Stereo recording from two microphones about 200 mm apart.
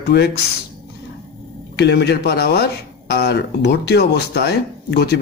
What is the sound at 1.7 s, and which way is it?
Speech, 55° left (ahead or behind).